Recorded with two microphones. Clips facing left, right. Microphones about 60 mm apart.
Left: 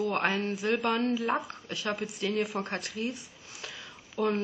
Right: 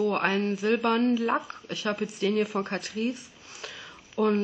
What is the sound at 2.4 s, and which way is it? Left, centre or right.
Speech, right.